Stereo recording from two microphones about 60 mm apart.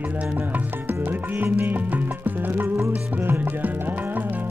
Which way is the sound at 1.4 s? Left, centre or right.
Right.